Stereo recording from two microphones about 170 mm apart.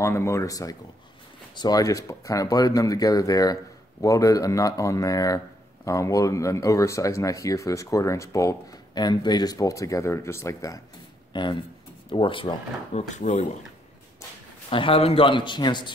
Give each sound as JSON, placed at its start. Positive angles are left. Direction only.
{"t": 0.0, "sound": "speech", "side_deg": 15}
{"t": 13.2, "sound": "speech", "side_deg": 45}
{"t": 14.7, "sound": "speech", "side_deg": 30}